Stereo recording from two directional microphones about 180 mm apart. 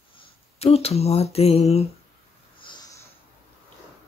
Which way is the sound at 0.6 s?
35° left (ahead or behind).